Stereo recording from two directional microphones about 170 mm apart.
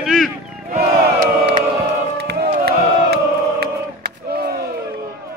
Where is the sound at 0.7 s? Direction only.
65° right (ahead or behind).